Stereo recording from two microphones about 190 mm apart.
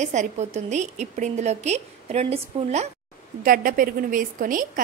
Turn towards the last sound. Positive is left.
turn(degrees=-45)  # may be behind; listen again after turning